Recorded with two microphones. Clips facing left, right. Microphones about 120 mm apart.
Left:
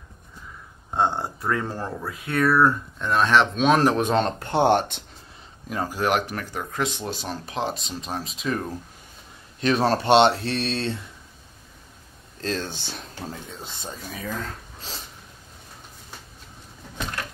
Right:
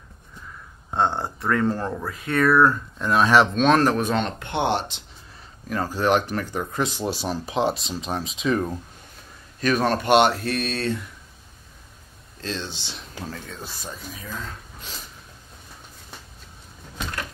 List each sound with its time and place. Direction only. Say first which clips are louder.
0.9 s speech: even; 10° left (ahead or behind)
3.0 s speech: right 2 dB; 5° right (ahead or behind)
3.6 s speech: right 1 dB; 10° left (ahead or behind)
3.9 s speech: left 1 dB; 20° left (ahead or behind)
4.2 s speech: left 4 dB; 40° left (ahead or behind)
5.7 s speech: right 2 dB; 10° left (ahead or behind)
9.6 s speech: left 1 dB; 25° left (ahead or behind)
12.4 s speech: left 3 dB; 45° left (ahead or behind)
13.3 s speech: right 1 dB; 20° left (ahead or behind)
14.8 s a sound: left 1 dB; 30° left (ahead or behind)